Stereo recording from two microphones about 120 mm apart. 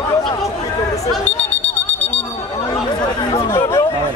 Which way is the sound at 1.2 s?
15° left (ahead or behind).